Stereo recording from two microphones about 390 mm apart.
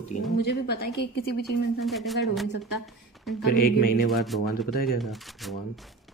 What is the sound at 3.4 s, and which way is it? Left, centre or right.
Speech, left.